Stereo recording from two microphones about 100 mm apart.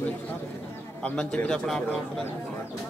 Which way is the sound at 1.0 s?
15° left (ahead or behind).